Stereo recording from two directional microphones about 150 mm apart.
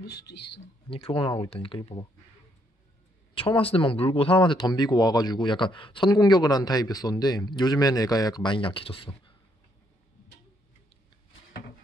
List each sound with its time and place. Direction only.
0.0 s speech: 90° left
0.8 s speech: 40° left (ahead or behind)
3.3 s speech: 35° left (ahead or behind)